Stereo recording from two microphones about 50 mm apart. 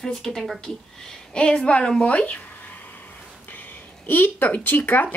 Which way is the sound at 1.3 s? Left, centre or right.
Centre.